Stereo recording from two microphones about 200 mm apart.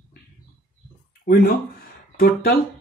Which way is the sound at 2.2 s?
50° left (ahead or behind).